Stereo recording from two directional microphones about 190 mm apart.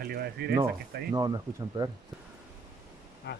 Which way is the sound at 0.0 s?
55° right (ahead or behind).